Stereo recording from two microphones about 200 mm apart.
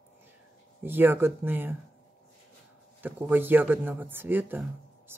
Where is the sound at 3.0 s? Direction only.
10° right (ahead or behind).